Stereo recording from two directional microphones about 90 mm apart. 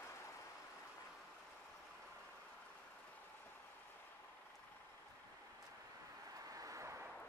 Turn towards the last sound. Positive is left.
turn(degrees=-35)  # may be behind; listen again after turning